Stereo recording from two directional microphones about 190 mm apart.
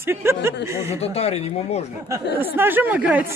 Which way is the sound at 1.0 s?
30° left (ahead or behind).